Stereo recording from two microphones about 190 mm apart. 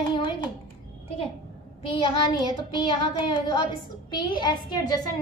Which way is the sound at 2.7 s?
25° left (ahead or behind).